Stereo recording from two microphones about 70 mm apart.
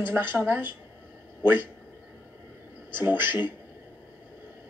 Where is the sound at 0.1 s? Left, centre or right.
Right.